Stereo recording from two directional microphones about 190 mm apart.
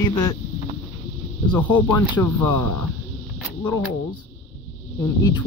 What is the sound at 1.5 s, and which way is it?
Speech, 10° left (ahead or behind).